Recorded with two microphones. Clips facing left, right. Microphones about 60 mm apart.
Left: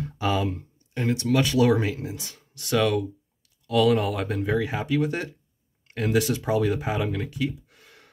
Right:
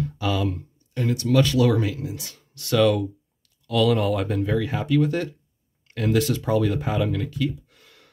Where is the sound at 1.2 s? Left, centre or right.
Centre.